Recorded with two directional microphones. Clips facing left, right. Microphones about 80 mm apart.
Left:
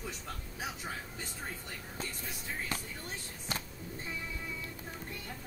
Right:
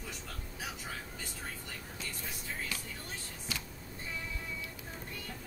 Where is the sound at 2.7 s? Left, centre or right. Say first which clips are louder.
Left 4 dB; left.